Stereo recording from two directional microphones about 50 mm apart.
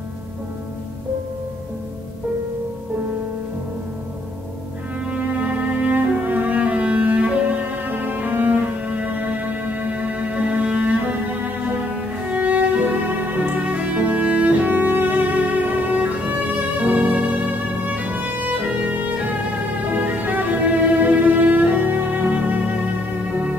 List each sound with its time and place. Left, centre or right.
5.1 s cello: right
12.2 s music: right
18.7 s music: centre
19.9 s music: right